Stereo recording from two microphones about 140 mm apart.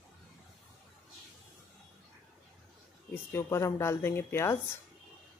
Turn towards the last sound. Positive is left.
turn(degrees=20)  # may be behind; listen again after turning